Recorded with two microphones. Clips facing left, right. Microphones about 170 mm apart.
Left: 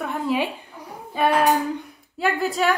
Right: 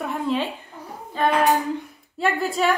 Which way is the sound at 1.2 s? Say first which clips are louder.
Left 1 dB; 10° left (ahead or behind).